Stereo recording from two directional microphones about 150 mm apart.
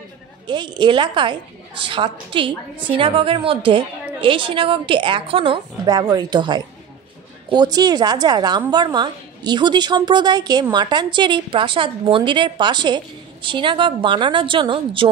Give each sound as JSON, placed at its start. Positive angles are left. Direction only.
{"t": 0.5, "sound": "a woman's voice", "side_deg": -30}